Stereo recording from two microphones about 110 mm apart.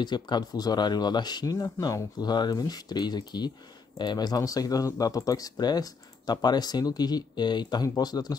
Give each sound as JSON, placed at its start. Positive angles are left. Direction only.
{"t": 0.0, "sound": "speech", "side_deg": 40}